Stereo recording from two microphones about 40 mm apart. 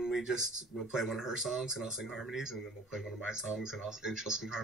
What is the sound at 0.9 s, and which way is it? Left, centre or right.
Speech, centre.